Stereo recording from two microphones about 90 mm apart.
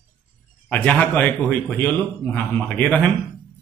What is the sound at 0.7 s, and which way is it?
A man's voice, 15° left (ahead or behind).